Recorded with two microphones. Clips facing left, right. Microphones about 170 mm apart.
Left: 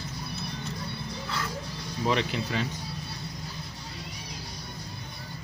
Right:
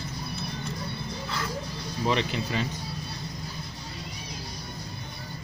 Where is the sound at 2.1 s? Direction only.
Centre (ahead or behind).